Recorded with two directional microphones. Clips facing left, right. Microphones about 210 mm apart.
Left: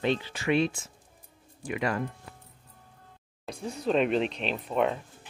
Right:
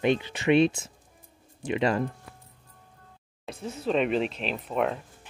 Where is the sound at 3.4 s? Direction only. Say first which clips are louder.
Even; 5° right (ahead or behind).